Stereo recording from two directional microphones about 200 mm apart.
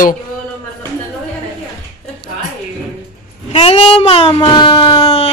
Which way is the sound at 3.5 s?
30° left (ahead or behind).